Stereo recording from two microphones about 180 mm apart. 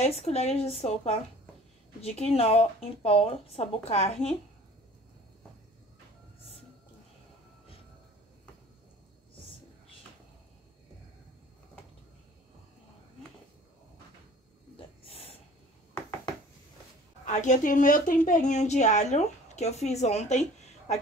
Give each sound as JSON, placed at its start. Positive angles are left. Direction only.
{"t": 0.0, "sound": "speech", "side_deg": 35}
{"t": 15.0, "sound": "snort", "side_deg": 35}
{"t": 17.3, "sound": "speech", "side_deg": 45}